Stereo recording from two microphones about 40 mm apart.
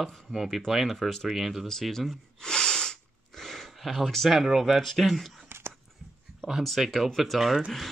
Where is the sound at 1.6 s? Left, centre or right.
Centre.